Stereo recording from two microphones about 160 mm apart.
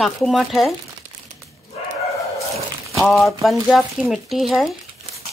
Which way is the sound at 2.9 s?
Centre (ahead or behind).